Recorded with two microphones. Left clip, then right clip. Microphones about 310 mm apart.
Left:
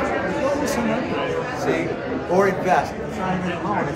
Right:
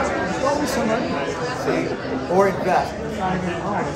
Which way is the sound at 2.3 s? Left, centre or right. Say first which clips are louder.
Even; centre.